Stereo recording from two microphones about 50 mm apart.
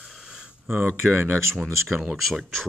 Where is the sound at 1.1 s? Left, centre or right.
Right.